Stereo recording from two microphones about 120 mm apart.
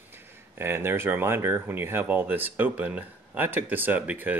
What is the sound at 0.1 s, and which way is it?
Speech, 20° right (ahead or behind).